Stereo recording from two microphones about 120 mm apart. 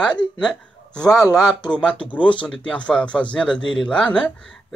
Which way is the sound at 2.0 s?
10° left (ahead or behind).